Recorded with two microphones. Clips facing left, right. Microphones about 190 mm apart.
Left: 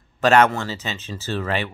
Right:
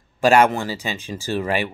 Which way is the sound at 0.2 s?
10° right (ahead or behind).